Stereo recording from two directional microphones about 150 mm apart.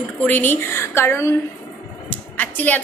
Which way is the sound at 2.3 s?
10° left (ahead or behind).